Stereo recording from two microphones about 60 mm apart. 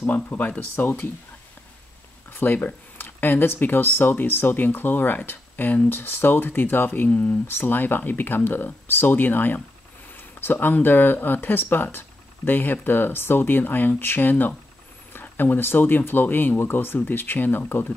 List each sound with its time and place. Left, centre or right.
0.0 s speech: left
2.3 s speech: left